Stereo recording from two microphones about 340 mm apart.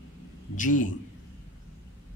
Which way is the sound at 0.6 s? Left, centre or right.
Left.